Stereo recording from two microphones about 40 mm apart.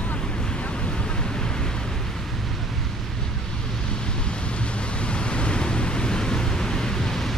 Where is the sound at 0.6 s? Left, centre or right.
Left.